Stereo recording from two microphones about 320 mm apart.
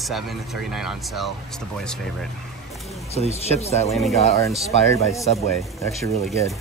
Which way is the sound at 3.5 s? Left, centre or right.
Centre.